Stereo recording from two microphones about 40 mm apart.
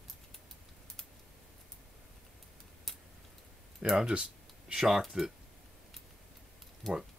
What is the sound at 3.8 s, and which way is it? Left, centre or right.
Speech, centre.